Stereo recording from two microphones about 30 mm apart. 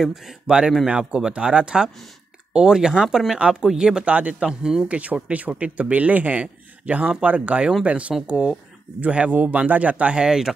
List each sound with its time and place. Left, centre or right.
0.0 s speech: centre
0.8 s speech: right
4.0 s speech: right
4.4 s speech: right
4.8 s speech: right
10.1 s speech: right